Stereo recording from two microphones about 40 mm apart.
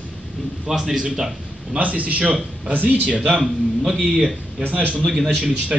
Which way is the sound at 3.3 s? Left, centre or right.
Centre.